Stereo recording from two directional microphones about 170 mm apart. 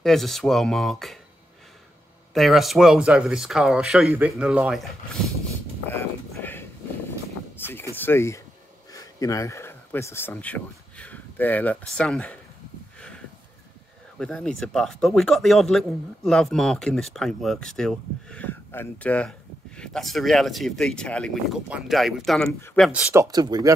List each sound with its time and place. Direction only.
0.0 s speech: centre (ahead or behind)
2.3 s speech: centre (ahead or behind)
5.9 s a sound: 15° left (ahead or behind)
8.9 s speech: 20° left (ahead or behind)
14.1 s speech: 5° left (ahead or behind)
23.2 s speech: 25° right (ahead or behind)